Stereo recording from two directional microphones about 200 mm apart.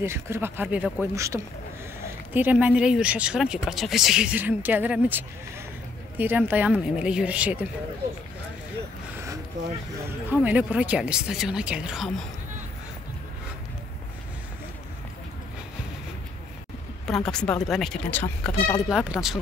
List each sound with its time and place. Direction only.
0.0 s speech: 10° right (ahead or behind)
1.1 s speech: 15° right (ahead or behind)
9.1 s a sound: 15° right (ahead or behind)
10.3 s speech: 10° right (ahead or behind)
17.1 s speech: 5° left (ahead or behind)
18.9 s speech: centre (ahead or behind)